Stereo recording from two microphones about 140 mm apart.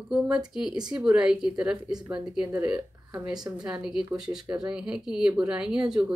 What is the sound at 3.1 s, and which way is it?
Speech, 25° right (ahead or behind).